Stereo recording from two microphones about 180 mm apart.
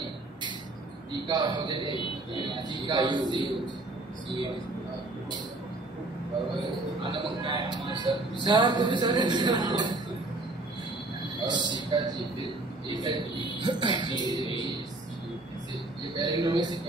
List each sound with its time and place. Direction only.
1.2 s speech: 25° right (ahead or behind)
1.9 s a man's voice: 25° left (ahead or behind)
2.9 s speech: 25° right (ahead or behind)
7.0 s speech: 25° right (ahead or behind)
11.4 s speech: 25° right (ahead or behind)
14.2 s a man's voice: 25° left (ahead or behind)
16.2 s speech: 25° right (ahead or behind)